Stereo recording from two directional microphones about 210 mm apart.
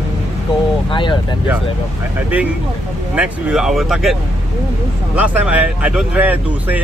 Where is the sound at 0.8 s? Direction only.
25° left (ahead or behind).